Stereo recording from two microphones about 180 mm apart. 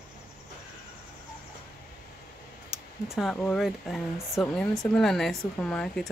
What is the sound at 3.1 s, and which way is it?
Speech, centre (ahead or behind).